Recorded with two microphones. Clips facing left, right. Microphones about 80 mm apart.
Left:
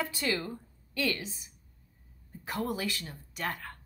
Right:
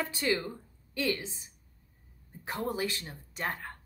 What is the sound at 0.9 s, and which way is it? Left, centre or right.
A woman's voice, right.